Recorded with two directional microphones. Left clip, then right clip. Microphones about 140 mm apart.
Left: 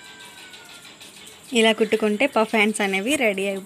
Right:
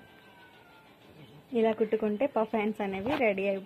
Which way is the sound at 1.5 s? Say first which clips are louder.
Left 9 dB; 15° left (ahead or behind).